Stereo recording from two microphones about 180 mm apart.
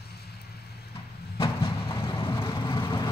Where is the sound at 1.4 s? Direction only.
30° left (ahead or behind).